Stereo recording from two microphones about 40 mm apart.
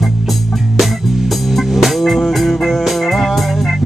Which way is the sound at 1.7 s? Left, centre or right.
Centre.